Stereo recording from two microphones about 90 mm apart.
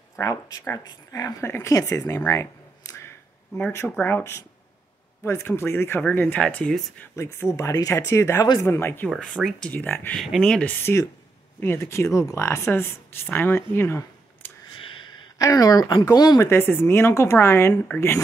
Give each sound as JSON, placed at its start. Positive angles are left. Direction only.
{"t": 0.1, "sound": "speech", "side_deg": 40}
{"t": 1.4, "sound": "speech", "side_deg": 30}
{"t": 7.2, "sound": "speech", "side_deg": 35}
{"t": 9.1, "sound": "speech", "side_deg": 5}
{"t": 9.7, "sound": "speech", "side_deg": 20}
{"t": 10.1, "sound": "speech", "side_deg": -5}
{"t": 10.4, "sound": "speech", "side_deg": 10}
{"t": 11.6, "sound": "speech", "side_deg": 30}
{"t": 15.3, "sound": "speech", "side_deg": 45}
{"t": 16.3, "sound": "speech", "side_deg": 25}